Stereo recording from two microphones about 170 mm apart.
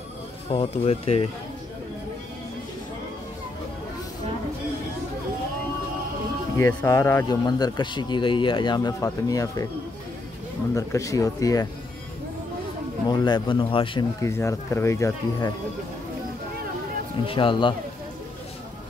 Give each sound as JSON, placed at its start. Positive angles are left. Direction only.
{"t": 0.5, "sound": "speech", "side_deg": 35}
{"t": 6.5, "sound": "speech", "side_deg": 15}
{"t": 10.7, "sound": "speech", "side_deg": 20}
{"t": 13.1, "sound": "speech", "side_deg": 25}
{"t": 14.2, "sound": "speech", "side_deg": 15}
{"t": 17.3, "sound": "speech", "side_deg": 30}